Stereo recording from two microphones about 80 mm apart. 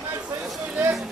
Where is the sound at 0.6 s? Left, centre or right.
Centre.